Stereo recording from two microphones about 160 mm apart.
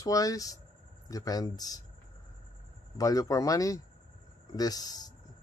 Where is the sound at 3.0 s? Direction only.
20° left (ahead or behind).